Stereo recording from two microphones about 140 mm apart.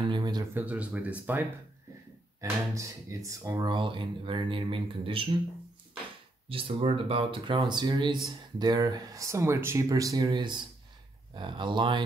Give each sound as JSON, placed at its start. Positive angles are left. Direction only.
{"t": 0.1, "sound": "a sound", "side_deg": -30}
{"t": 0.6, "sound": "speech", "side_deg": -10}
{"t": 2.4, "sound": "speech", "side_deg": -20}
{"t": 6.5, "sound": "speech", "side_deg": -40}